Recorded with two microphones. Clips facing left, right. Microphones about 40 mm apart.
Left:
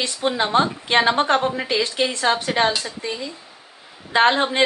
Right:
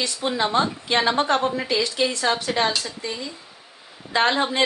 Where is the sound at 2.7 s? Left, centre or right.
Centre.